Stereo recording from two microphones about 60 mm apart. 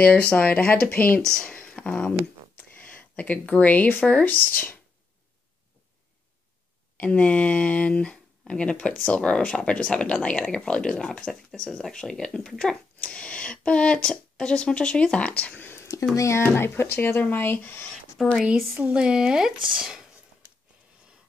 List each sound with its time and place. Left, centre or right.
0.3 s speech: left
1.2 s speech: centre
1.5 s a sound: centre
4.2 s speech: left
7.0 s speech: left
16.2 s speech: left
16.5 s speech: left
18.1 s speech: centre
18.9 s speech: centre